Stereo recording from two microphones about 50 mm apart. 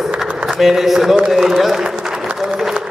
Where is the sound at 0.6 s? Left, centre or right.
Centre.